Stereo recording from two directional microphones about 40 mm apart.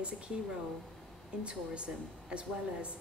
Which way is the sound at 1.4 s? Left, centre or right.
Right.